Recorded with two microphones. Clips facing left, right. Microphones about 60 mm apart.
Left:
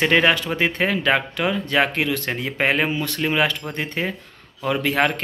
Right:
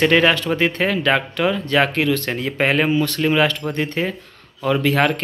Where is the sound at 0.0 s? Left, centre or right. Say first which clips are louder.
Right 2 dB; centre.